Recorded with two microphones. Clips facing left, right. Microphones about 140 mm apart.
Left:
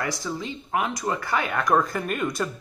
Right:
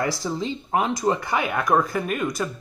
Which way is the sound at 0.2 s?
30° right (ahead or behind).